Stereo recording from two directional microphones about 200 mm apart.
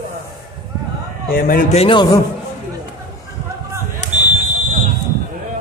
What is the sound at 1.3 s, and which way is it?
Speech, 45° left (ahead or behind).